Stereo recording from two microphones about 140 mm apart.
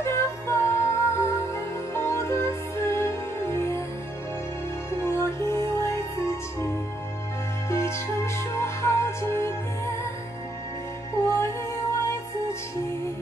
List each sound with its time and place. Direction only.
0.0 s music: 20° left (ahead or behind)
5.0 s music: 20° left (ahead or behind)
7.7 s music: 20° left (ahead or behind)
11.2 s music: 20° left (ahead or behind)